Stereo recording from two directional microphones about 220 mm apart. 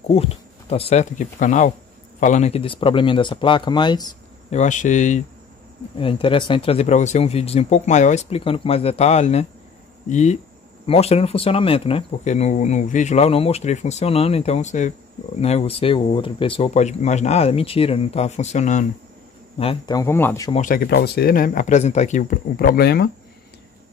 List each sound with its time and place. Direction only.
0.1 s speech: 25° left (ahead or behind)
4.6 s speech: 35° left (ahead or behind)
5.9 s speech: 25° left (ahead or behind)
19.6 s speech: 20° left (ahead or behind)
20.5 s speech: 40° left (ahead or behind)